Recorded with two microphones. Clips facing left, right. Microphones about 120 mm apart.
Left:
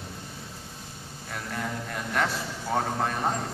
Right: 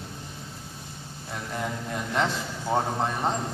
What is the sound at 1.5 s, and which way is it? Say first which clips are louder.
A man's voice: right 2 dB; 20° right (ahead or behind).